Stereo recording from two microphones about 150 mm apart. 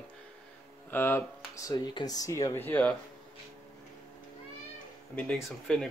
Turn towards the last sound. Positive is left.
turn(degrees=5)  # may be behind; listen again after turning